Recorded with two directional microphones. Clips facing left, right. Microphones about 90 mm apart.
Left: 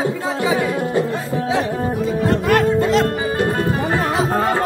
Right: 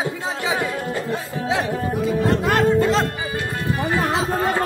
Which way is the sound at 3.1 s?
45° left (ahead or behind).